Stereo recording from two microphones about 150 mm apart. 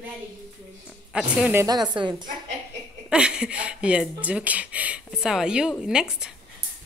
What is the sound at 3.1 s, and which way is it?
Speech, 5° right (ahead or behind).